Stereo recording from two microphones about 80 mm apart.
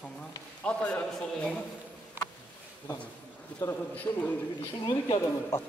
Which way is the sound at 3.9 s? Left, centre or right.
Centre.